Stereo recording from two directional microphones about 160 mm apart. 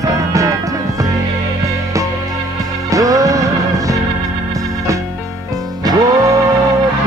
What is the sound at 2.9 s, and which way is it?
Music, 20° right (ahead or behind).